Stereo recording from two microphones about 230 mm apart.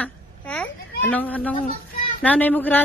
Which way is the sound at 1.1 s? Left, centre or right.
Centre.